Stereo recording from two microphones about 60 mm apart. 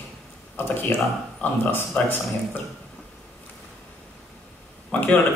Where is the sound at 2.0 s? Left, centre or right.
Left.